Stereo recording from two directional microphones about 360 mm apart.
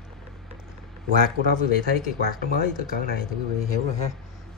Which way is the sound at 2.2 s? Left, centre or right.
Right.